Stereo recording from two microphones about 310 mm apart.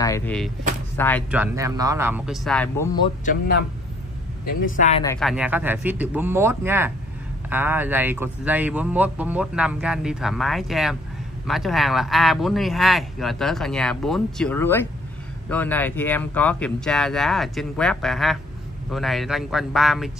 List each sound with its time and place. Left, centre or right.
0.0 s a man's voice: centre
1.3 s a man's voice: centre
4.6 s speech: left
5.0 s speech: centre
5.3 s a man's voice: centre